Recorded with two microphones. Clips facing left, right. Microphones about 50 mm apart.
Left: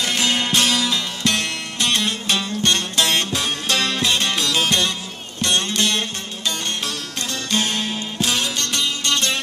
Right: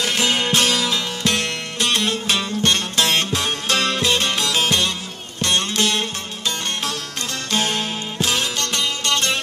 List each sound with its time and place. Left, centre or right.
0.0 s music: right
3.3 s music: right
4.0 s music: centre
5.6 s music: right
7.5 s music: right